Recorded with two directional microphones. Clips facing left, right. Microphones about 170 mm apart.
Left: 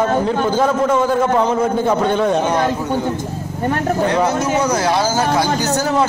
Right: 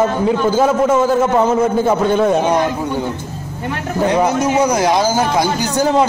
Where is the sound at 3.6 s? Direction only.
45° left (ahead or behind).